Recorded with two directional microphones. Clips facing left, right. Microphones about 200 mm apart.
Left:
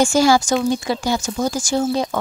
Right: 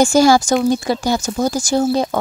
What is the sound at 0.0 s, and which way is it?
Speech, 40° right (ahead or behind).